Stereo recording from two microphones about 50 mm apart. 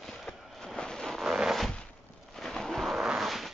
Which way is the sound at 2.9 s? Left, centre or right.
Centre.